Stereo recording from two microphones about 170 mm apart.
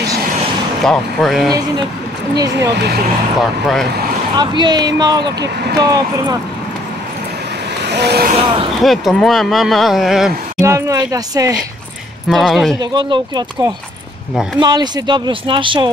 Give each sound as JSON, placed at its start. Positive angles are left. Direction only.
{"t": 0.8, "sound": "speech", "side_deg": 0}
{"t": 2.3, "sound": "speech", "side_deg": -20}
{"t": 2.7, "sound": "speech", "side_deg": -75}
{"t": 4.4, "sound": "speech", "side_deg": -25}
{"t": 7.8, "sound": "vehicle", "side_deg": -85}
{"t": 8.8, "sound": "speech", "side_deg": 0}
{"t": 10.6, "sound": "speech", "side_deg": -15}
{"t": 12.3, "sound": "speech", "side_deg": 0}
{"t": 12.9, "sound": "speech", "side_deg": -25}